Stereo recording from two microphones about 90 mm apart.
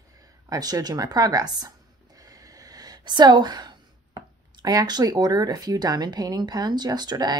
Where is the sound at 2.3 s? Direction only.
40° right (ahead or behind).